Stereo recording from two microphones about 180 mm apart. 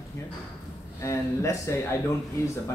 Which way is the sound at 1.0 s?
15° left (ahead or behind).